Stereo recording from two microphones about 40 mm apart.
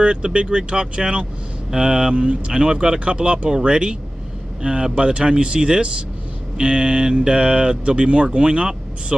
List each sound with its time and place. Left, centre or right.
0.0 s speech: right